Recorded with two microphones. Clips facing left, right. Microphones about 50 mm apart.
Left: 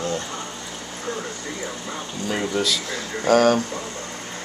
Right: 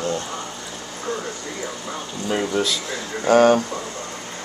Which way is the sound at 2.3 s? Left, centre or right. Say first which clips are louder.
Right 2 dB; centre.